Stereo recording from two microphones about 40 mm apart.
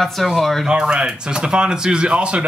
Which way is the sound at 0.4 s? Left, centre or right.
Centre.